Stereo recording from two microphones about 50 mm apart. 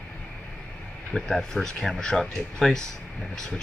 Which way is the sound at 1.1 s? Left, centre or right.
Centre.